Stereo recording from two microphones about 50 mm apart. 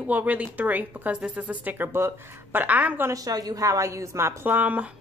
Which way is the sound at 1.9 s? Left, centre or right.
Right.